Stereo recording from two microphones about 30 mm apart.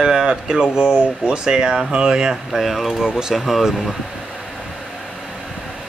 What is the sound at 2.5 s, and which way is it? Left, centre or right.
Speech, centre.